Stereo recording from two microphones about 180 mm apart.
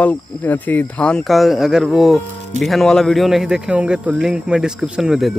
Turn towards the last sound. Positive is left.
turn(degrees=0)  # may be behind; listen again after turning